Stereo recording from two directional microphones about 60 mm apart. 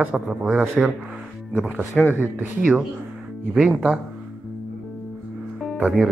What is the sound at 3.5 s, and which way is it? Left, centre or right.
Speech, centre.